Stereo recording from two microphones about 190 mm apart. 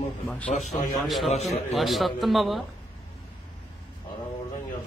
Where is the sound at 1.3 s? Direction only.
35° left (ahead or behind).